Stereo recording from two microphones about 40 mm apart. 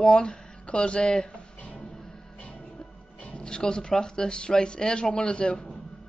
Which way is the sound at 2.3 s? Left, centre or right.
Left.